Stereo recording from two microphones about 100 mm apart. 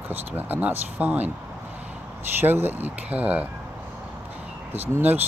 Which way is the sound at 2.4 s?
20° right (ahead or behind).